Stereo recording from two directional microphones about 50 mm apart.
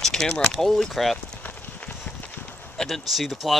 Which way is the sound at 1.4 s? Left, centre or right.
Left.